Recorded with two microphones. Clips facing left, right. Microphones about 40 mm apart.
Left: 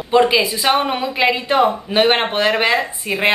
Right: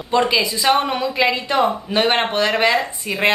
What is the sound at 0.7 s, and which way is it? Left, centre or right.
Speech, centre.